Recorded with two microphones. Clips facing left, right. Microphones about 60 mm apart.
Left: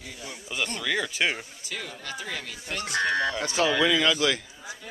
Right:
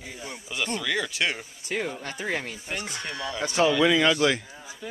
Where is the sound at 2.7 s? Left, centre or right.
Centre.